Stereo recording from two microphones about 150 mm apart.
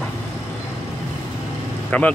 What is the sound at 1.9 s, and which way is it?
Speech, 10° left (ahead or behind).